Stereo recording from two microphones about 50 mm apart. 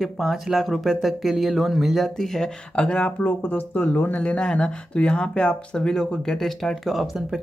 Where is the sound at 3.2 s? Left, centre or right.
Left.